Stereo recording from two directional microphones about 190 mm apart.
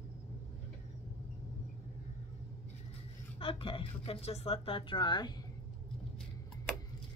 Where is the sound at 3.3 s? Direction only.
30° left (ahead or behind).